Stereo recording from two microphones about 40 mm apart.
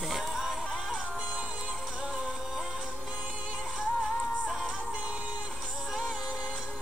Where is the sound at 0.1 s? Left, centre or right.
Centre.